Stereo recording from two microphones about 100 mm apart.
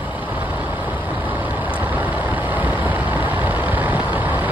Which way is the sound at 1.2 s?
15° right (ahead or behind).